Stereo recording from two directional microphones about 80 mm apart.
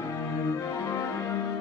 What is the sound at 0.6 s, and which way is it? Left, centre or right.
Music, left.